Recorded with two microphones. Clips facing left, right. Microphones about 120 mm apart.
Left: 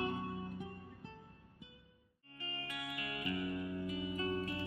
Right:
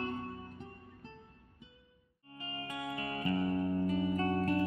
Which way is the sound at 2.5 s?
20° right (ahead or behind).